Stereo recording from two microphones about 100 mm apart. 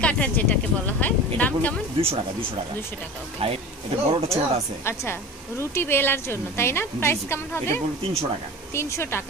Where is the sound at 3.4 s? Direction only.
75° right (ahead or behind).